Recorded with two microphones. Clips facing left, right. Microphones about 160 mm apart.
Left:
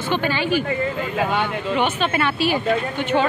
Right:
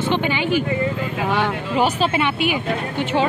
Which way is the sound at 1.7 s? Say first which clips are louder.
Right 3 dB; 35° right (ahead or behind).